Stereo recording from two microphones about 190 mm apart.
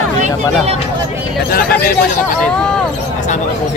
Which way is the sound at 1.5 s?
50° left (ahead or behind).